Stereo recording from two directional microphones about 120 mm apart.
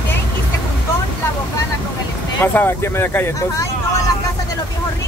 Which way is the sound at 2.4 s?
20° left (ahead or behind).